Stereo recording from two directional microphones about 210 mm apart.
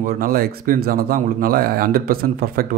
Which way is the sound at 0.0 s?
45° right (ahead or behind).